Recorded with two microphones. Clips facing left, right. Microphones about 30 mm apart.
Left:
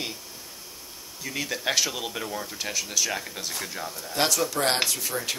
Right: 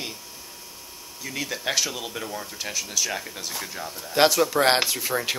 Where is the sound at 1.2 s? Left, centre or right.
Centre.